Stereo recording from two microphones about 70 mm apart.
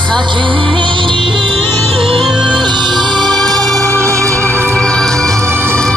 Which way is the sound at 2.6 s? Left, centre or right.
Right.